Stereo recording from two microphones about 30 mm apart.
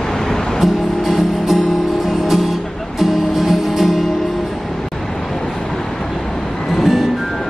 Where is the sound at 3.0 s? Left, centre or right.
Centre.